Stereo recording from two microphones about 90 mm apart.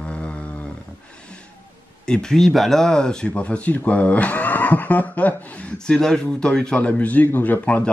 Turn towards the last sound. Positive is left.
turn(degrees=15)  # may be behind; listen again after turning